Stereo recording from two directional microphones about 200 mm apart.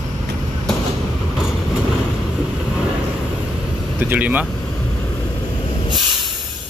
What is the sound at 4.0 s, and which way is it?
Speech, 10° right (ahead or behind).